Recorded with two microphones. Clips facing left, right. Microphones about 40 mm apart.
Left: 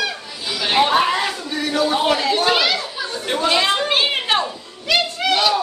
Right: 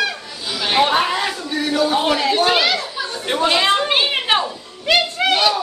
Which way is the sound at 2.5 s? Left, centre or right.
Right.